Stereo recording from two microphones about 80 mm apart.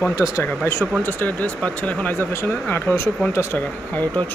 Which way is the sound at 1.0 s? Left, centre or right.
Left.